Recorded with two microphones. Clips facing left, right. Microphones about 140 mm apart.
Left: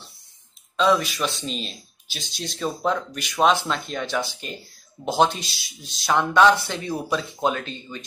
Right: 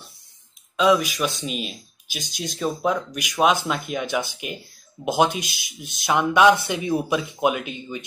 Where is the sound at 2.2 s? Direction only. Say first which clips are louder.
Right 2 dB; 45° right (ahead or behind).